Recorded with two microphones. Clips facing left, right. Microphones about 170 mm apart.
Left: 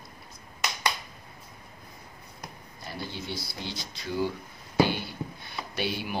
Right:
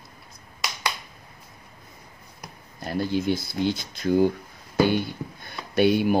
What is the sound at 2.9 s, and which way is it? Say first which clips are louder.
Speech: right 13 dB; 50° right (ahead or behind).